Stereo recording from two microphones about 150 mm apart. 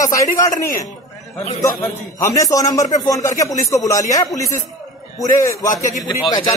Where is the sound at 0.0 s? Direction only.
20° left (ahead or behind).